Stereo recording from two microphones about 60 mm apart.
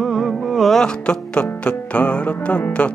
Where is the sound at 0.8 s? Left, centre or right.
Centre.